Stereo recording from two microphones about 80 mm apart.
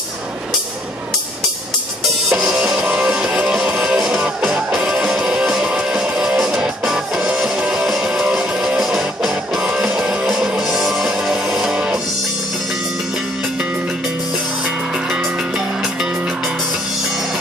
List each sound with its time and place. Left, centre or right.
2.2 s music: centre
2.5 s music: centre
15.0 s music: centre